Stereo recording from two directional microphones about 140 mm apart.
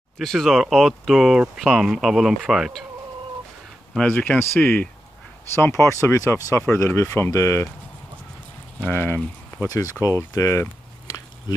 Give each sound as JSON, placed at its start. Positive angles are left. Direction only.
{"t": 0.2, "sound": "speech", "side_deg": 0}
{"t": 3.9, "sound": "speech", "side_deg": 10}
{"t": 8.7, "sound": "speech", "side_deg": 15}